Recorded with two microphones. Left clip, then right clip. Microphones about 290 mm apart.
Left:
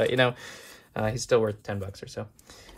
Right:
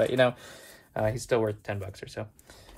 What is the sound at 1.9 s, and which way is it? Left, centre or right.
Speech, centre.